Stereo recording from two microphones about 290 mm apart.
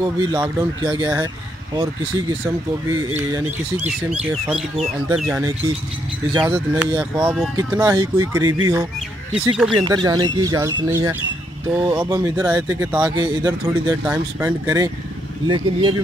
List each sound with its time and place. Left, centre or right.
0.0 s speech: centre
4.1 s speech: centre
9.8 s speech: centre